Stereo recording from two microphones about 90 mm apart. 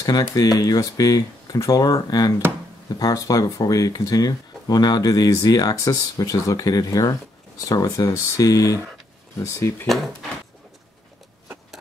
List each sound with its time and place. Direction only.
0.0 s speech: 45° left (ahead or behind)